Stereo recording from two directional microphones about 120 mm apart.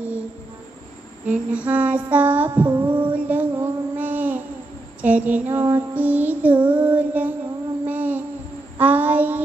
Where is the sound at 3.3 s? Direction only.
15° right (ahead or behind).